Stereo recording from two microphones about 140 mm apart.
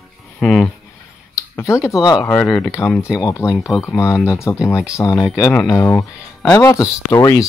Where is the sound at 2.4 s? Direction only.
10° left (ahead or behind).